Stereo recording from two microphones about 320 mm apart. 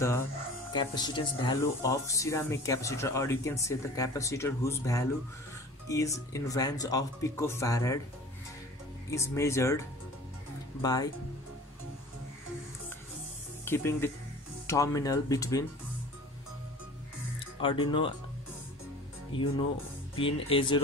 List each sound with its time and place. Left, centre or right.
0.7 s speech: centre
9.1 s speech: centre
10.8 s speech: centre
13.7 s speech: centre
17.6 s speech: centre
19.3 s speech: centre